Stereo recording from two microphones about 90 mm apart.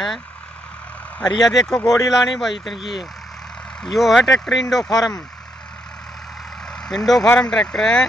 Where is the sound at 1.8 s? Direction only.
40° left (ahead or behind).